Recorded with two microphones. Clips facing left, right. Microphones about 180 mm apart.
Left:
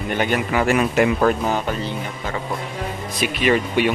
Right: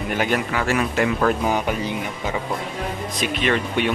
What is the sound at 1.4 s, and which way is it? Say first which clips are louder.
Speech: even; 10° right (ahead or behind).